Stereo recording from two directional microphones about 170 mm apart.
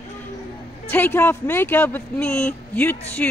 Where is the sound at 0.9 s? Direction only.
10° left (ahead or behind).